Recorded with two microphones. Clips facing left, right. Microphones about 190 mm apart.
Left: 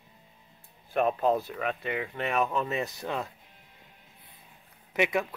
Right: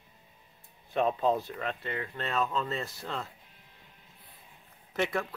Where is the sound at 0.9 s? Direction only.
10° left (ahead or behind).